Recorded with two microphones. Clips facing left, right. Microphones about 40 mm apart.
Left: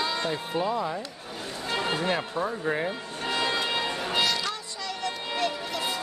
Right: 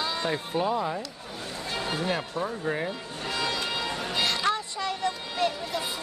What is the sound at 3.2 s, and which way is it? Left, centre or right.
Music, left.